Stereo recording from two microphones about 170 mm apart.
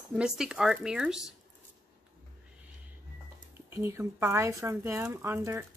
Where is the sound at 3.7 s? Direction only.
15° right (ahead or behind).